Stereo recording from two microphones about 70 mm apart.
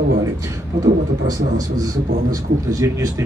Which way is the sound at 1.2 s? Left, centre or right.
Right.